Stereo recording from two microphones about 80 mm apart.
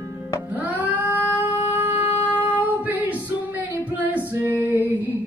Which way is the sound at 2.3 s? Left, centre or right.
Left.